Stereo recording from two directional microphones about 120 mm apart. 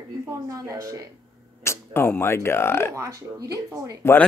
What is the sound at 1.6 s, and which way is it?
Speech, 20° left (ahead or behind).